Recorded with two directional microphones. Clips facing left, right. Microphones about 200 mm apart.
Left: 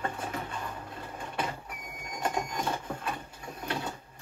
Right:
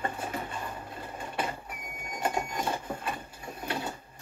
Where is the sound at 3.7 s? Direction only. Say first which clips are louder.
Even; 5° right (ahead or behind).